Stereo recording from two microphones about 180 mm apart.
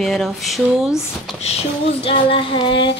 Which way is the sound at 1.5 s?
30° left (ahead or behind).